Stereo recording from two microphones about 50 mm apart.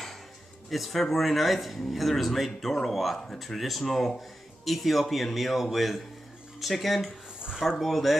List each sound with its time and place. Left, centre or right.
0.7 s speech: centre